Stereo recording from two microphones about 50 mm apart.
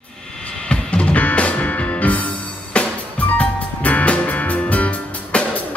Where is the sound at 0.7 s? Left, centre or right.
Left.